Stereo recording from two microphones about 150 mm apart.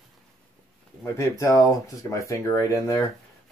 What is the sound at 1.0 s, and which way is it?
Speech, 20° left (ahead or behind).